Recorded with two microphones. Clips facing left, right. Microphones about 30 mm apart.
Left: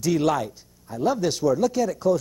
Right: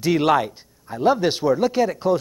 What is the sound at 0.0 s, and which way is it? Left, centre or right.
Speech, right.